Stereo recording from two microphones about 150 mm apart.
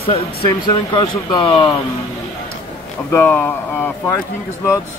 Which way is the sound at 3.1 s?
10° left (ahead or behind).